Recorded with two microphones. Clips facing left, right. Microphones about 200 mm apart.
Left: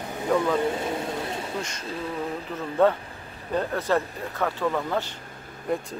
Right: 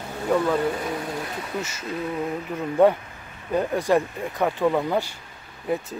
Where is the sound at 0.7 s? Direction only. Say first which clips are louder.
Even; 25° left (ahead or behind).